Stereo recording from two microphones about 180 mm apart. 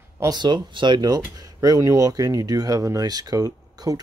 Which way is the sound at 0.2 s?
25° right (ahead or behind).